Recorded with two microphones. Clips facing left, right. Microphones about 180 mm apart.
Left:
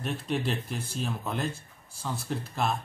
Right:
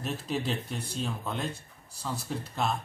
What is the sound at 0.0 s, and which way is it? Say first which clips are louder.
A man's voice: left 2 dB; centre (ahead or behind).